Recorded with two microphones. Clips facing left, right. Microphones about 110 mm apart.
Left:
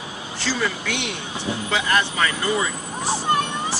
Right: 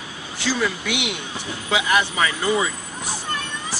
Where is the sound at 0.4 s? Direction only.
10° right (ahead or behind).